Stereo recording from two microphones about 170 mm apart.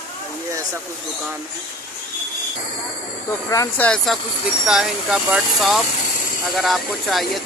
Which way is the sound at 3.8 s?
5° left (ahead or behind).